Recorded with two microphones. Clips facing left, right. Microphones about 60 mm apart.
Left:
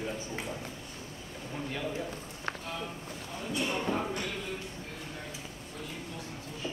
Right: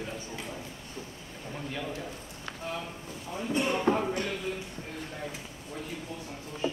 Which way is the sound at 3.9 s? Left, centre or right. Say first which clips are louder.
Right 8 dB; right.